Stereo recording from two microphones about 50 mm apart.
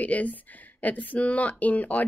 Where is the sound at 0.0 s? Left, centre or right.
Left.